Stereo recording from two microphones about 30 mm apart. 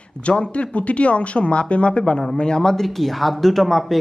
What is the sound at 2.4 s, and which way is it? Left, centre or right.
Speech, left.